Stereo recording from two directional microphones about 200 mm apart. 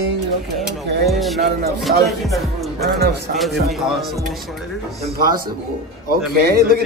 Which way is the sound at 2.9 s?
55° right (ahead or behind).